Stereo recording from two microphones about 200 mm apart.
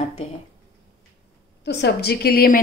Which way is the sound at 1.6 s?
55° left (ahead or behind).